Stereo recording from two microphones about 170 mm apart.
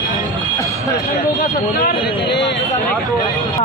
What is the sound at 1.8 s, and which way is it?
Speech, 70° left (ahead or behind).